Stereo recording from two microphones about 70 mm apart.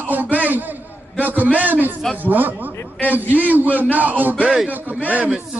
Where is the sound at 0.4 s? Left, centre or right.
Right.